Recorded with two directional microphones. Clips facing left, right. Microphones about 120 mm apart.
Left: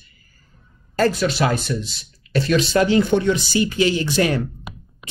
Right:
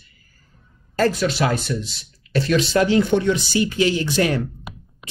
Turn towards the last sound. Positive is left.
turn(degrees=30)  # may be behind; listen again after turning